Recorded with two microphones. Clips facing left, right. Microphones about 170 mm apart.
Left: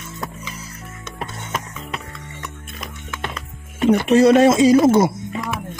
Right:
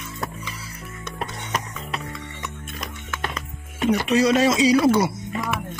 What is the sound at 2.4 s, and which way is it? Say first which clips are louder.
Music: left 1 dB; centre (ahead or behind).